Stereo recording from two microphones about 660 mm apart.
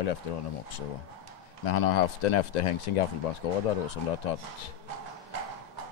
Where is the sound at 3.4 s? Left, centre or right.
Left.